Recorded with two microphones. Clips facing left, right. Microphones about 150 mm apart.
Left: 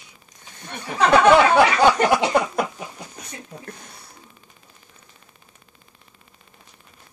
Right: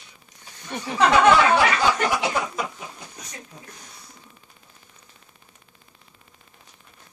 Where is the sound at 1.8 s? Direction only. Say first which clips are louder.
Left 6 dB; 55° left (ahead or behind).